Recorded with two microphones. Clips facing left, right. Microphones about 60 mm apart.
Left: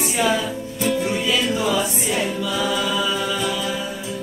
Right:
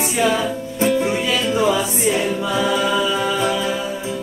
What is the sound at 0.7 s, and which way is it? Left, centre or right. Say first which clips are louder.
Music: right 4 dB; right.